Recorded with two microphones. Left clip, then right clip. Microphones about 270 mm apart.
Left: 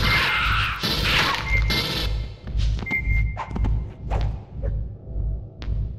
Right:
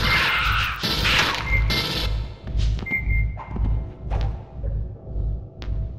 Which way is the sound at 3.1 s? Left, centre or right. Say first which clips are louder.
Left 1 dB; left.